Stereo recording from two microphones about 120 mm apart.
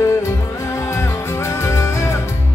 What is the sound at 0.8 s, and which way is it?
Music, 25° left (ahead or behind).